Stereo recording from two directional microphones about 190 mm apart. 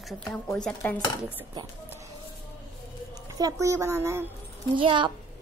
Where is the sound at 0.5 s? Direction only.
5° left (ahead or behind).